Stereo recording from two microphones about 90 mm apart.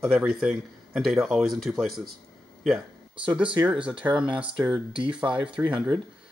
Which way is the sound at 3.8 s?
10° right (ahead or behind).